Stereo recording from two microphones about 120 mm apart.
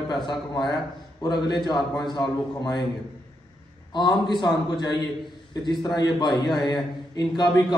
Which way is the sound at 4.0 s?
40° left (ahead or behind).